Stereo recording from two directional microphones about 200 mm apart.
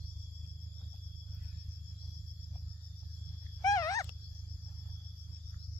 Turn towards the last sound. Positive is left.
turn(degrees=15)  # may be behind; listen again after turning